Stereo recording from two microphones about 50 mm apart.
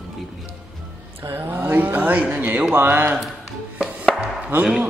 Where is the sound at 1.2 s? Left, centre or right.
Right.